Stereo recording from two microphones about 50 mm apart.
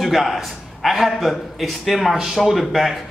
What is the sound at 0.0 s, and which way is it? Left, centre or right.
A man's voice, centre.